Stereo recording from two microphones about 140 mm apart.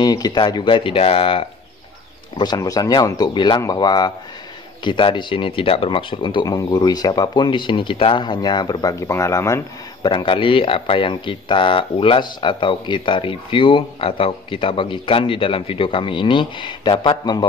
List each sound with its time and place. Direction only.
0.0 s speech: 30° left (ahead or behind)
2.3 s speech: 30° left (ahead or behind)
10.0 s speech: 35° left (ahead or behind)